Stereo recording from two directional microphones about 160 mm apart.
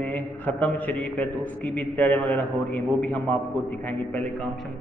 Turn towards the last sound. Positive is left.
turn(degrees=10)  # may be behind; listen again after turning